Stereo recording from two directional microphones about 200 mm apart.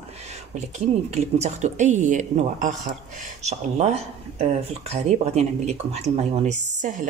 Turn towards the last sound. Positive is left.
turn(degrees=-40)  # may be behind; listen again after turning